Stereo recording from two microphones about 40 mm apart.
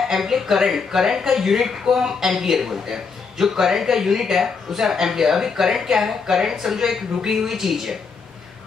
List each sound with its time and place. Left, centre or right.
0.1 s speech: centre